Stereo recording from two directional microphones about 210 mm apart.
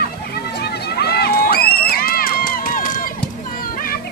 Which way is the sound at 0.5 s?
50° left (ahead or behind).